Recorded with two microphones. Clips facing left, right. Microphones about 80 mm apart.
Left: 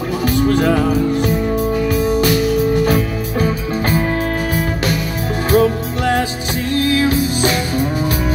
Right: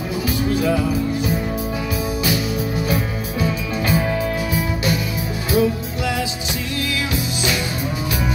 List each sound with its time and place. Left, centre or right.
0.3 s music: left
5.5 s music: left
6.7 s music: left